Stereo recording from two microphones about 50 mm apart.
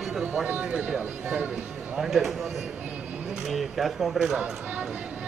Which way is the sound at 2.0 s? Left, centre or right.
Centre.